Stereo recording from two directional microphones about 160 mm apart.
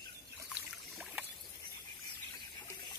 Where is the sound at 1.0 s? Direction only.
5° right (ahead or behind).